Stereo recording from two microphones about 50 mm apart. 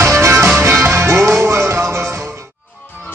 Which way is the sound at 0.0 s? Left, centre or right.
Right.